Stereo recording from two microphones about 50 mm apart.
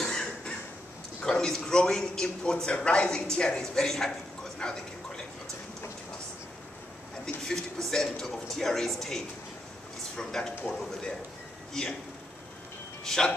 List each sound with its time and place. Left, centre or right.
0.0 s cough: centre
1.2 s a man's voice: centre
3.7 s a man's voice: centre
4.6 s a sound: centre
7.4 s a man's voice: centre
13.0 s speech: centre